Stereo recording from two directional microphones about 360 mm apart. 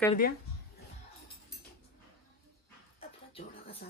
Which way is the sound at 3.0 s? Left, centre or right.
Centre.